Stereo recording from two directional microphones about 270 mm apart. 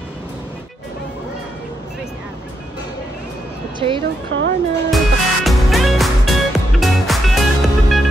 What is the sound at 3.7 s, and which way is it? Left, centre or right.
Speech, centre.